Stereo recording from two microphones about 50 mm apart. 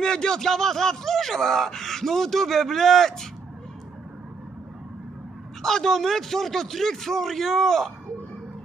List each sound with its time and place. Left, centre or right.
0.0 s speech: centre
5.6 s speech: centre